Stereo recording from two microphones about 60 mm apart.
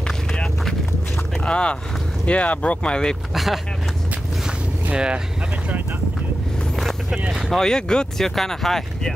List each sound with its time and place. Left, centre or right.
0.3 s vehicle: centre
1.4 s speech: centre
3.3 s speech: centre
4.9 s speech: centre
6.8 s vehicle: centre
7.5 s speech: centre